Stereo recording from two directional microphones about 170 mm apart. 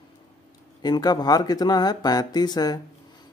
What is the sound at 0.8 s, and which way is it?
Speech, 25° left (ahead or behind).